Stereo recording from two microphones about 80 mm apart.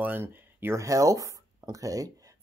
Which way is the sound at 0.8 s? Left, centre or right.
Right.